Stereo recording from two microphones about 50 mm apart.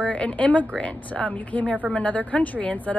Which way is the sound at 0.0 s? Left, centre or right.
Left.